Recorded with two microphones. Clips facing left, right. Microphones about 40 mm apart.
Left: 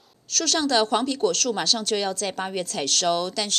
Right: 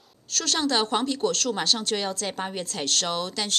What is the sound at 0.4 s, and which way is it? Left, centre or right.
A woman's voice, right.